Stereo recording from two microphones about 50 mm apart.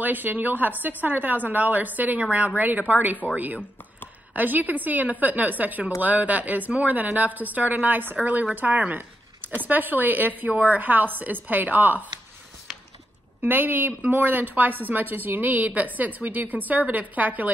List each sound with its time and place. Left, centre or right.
0.0 s speech: right
13.4 s a woman's voice: right